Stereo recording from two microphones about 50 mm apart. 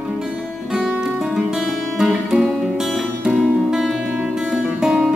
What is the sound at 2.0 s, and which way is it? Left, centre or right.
Music, centre.